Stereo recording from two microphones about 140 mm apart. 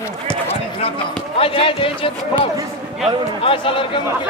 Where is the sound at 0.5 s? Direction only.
45° left (ahead or behind).